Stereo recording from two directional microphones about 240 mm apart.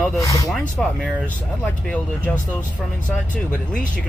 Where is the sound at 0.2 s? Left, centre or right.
Centre.